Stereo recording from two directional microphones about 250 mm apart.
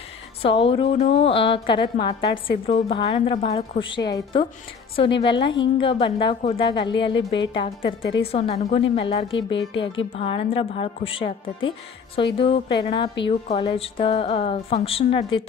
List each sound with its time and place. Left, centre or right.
0.6 s a woman's voice: left
12.4 s a woman's voice: left